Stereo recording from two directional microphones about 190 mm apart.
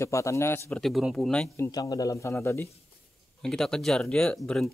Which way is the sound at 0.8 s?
Centre (ahead or behind).